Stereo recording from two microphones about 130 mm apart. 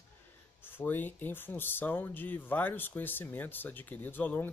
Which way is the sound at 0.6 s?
15° left (ahead or behind).